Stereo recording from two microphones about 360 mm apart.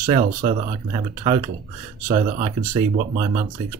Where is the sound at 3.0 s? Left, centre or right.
Right.